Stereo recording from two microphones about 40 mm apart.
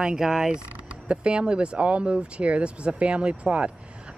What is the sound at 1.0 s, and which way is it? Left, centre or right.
Speech, right.